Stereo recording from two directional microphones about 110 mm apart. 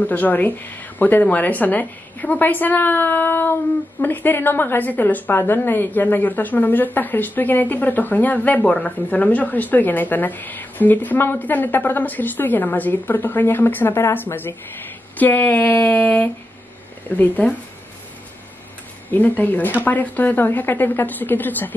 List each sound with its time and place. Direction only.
0.0 s a woman's voice: 15° left (ahead or behind)
19.0 s a woman's voice: 15° left (ahead or behind)